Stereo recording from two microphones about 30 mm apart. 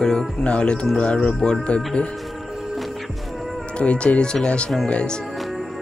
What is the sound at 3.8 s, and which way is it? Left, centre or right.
Speech, left.